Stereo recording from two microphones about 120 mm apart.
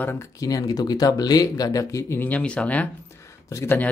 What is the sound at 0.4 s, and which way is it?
Speech, 30° left (ahead or behind).